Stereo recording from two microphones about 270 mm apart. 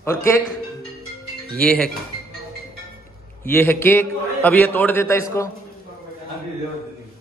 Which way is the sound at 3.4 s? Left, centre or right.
Centre.